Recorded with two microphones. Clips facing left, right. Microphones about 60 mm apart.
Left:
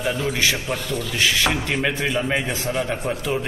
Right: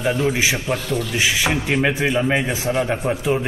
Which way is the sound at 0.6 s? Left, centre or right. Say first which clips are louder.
Right 3 dB; centre.